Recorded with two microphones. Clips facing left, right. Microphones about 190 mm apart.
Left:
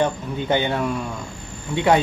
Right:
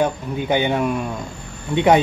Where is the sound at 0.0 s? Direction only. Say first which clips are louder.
Right 1 dB; 10° right (ahead or behind).